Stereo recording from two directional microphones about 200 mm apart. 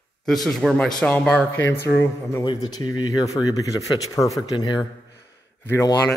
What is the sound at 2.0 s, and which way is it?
A man's voice, 15° left (ahead or behind).